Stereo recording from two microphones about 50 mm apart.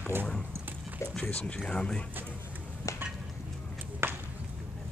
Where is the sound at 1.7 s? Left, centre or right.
Centre.